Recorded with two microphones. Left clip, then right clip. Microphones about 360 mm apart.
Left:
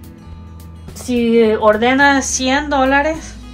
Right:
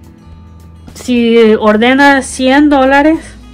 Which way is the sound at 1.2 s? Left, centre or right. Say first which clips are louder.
Right 5 dB; right.